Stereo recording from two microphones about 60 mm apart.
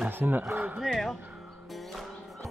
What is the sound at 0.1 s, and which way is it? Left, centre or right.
Speech, right.